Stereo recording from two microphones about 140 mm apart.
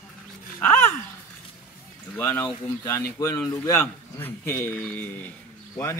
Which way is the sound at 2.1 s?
10° left (ahead or behind).